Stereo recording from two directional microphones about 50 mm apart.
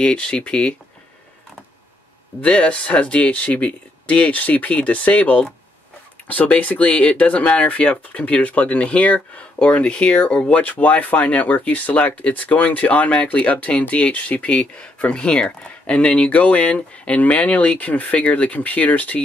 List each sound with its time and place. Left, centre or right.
0.0 s speech: left
2.4 s speech: left
10.6 s speech: left
16.3 s speech: left